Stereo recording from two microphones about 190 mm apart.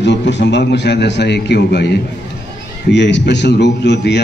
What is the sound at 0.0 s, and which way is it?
A man's voice, 65° left (ahead or behind).